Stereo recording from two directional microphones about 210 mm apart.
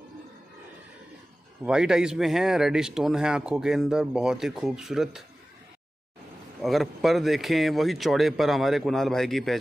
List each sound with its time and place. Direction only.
1.6 s speech: 5° right (ahead or behind)
6.6 s speech: centre (ahead or behind)